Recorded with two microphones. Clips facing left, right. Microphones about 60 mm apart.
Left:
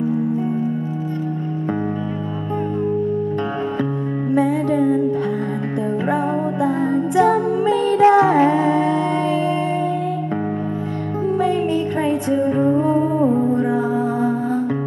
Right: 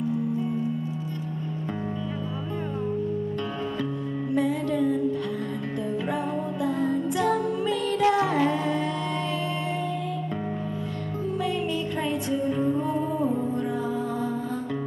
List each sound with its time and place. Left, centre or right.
4.3 s music: left
6.6 s music: left
11.3 s music: left
13.3 s music: left
13.6 s music: left